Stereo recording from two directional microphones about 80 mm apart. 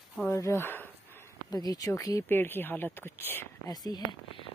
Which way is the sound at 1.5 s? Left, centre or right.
Left.